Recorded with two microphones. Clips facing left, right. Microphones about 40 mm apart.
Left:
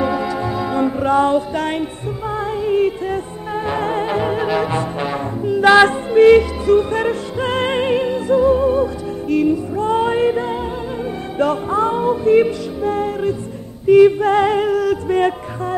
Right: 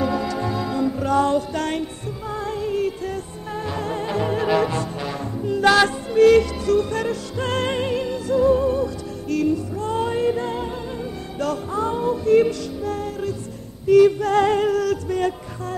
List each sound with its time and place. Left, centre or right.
0.0 s music: centre
0.7 s music: left
4.6 s brass instrument: left
5.9 s music: left
15.0 s music: left